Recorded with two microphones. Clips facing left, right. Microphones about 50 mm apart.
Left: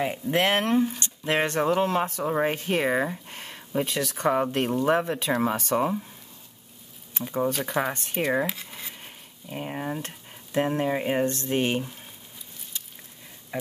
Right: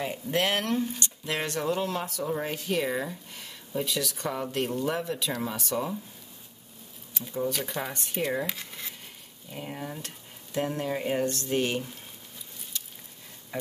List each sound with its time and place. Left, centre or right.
0.0 s speech: left
7.2 s speech: left
8.5 s speech: centre
9.0 s a sound: left
9.9 s speech: left